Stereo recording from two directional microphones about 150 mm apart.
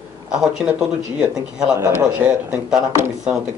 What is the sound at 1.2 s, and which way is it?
Speech, 5° right (ahead or behind).